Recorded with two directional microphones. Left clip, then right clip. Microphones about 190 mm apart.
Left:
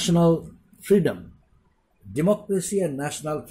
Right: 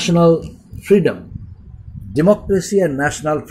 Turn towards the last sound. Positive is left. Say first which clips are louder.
# right 11 dB
turn(degrees=-5)  # may be behind; listen again after turning